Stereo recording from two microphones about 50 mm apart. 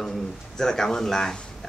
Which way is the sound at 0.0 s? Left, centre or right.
Centre.